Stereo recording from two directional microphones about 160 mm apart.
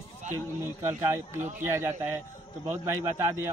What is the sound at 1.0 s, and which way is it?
A man's voice, 15° right (ahead or behind).